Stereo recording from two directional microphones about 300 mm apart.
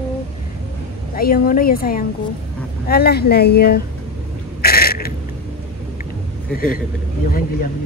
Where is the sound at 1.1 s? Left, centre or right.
Left.